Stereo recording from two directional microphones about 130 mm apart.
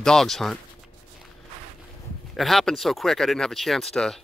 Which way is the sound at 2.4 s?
Centre (ahead or behind).